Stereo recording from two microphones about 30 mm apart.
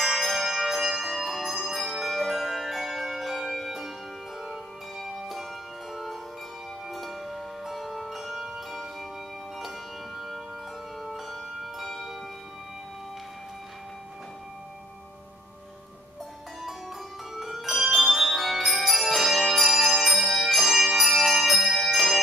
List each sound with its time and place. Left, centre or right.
0.0 s music: centre
6.9 s music: centre
9.6 s music: centre
11.0 s bell: centre
17.4 s music: centre